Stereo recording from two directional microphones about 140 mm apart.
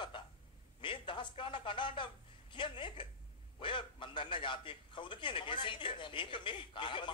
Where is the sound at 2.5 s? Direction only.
35° left (ahead or behind).